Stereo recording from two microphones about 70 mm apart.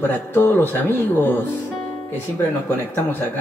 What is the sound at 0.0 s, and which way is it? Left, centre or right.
A man's voice, left.